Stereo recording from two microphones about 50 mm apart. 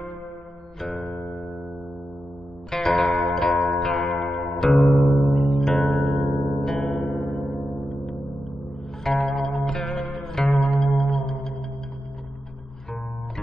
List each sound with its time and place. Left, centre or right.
0.7 s music: centre
1.0 s music: centre
2.7 s music: centre
9.0 s music: centre